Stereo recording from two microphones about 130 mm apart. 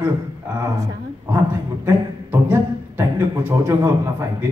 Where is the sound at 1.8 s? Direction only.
20° right (ahead or behind).